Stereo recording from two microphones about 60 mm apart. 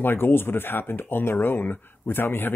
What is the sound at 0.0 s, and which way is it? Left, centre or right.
Speech, left.